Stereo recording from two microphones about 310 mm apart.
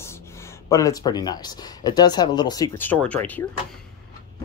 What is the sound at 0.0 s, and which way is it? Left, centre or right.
Speech, centre.